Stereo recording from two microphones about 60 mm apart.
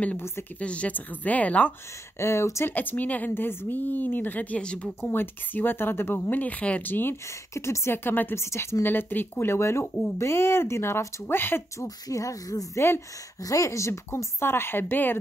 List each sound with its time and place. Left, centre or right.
0.6 s speech: left
2.1 s speech: left
2.7 s speech: left
4.6 s speech: centre
5.0 s speech: left
6.9 s speech: left
7.2 s speech: left
8.4 s speech: left
8.8 s speech: left
11.3 s speech: left
11.8 s speech: left
12.7 s speech: left
13.4 s speech: left
14.4 s speech: left